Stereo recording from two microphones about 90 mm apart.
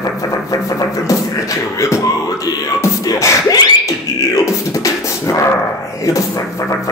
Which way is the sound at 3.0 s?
40° left (ahead or behind).